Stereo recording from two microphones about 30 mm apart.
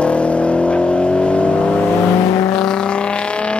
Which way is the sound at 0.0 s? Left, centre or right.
Left.